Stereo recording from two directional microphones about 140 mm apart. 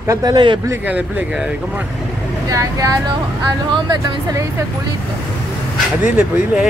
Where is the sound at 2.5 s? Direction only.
25° right (ahead or behind).